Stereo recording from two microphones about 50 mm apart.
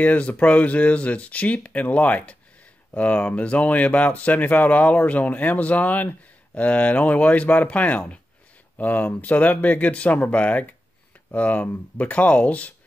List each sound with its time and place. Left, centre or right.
0.0 s speech: left